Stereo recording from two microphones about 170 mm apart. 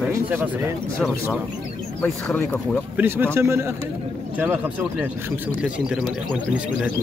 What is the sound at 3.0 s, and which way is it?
Speech, 10° right (ahead or behind).